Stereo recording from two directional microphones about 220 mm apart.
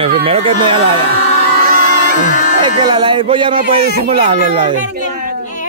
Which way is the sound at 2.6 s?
20° right (ahead or behind).